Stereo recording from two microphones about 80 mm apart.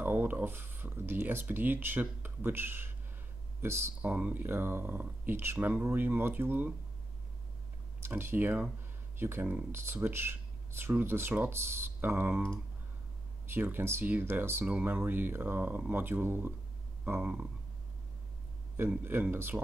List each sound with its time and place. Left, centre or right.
0.0 s speech: right
4.0 s speech: centre
8.0 s speech: right
18.8 s speech: right